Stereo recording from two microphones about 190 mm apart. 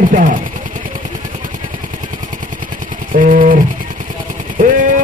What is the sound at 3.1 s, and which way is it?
Speech, 45° right (ahead or behind).